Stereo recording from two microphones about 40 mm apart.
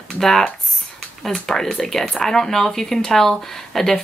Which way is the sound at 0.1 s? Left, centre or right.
Centre.